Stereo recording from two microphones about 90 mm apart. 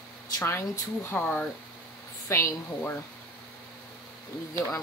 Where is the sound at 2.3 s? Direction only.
30° left (ahead or behind).